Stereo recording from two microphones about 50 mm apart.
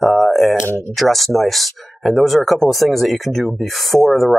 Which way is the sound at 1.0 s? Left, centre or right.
Centre.